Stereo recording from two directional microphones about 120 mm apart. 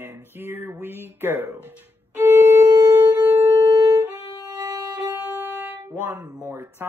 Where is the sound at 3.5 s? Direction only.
30° right (ahead or behind).